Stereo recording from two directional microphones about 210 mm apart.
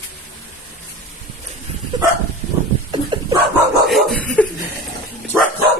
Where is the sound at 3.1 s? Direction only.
20° right (ahead or behind).